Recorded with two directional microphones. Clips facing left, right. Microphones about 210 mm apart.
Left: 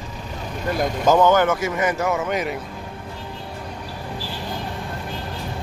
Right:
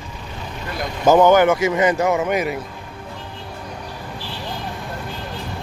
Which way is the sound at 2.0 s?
10° right (ahead or behind).